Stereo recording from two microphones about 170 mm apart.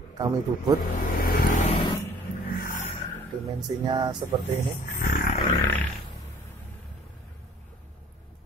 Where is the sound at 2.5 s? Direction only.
60° left (ahead or behind).